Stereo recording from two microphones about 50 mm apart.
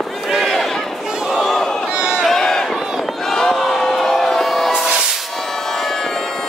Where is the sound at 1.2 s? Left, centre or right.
Centre.